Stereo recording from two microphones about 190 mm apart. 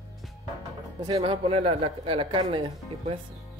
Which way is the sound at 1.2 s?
30° right (ahead or behind).